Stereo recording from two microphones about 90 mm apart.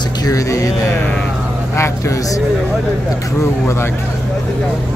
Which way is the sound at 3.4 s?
30° left (ahead or behind).